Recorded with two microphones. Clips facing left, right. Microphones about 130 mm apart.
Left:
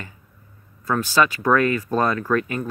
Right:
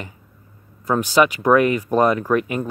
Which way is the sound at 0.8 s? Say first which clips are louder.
Right 3 dB; 20° right (ahead or behind).